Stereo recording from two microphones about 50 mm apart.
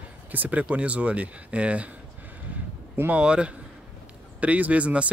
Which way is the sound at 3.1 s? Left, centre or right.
Right.